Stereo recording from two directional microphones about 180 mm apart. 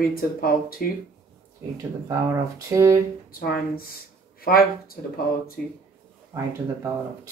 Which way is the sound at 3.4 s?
55° left (ahead or behind).